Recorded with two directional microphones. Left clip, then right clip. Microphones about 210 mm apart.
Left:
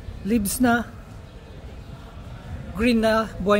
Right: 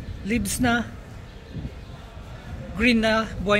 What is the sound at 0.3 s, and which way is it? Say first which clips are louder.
Speech: left 2 dB; 35° left (ahead or behind).